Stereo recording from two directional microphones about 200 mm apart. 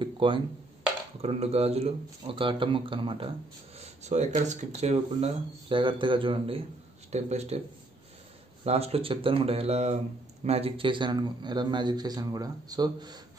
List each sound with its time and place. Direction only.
0.0 s wood block: 25° right (ahead or behind)
1.2 s a man's voice: 30° right (ahead or behind)
8.6 s a man's voice: 30° right (ahead or behind)